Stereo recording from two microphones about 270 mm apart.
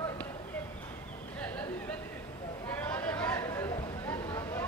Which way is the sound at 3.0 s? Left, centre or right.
Centre.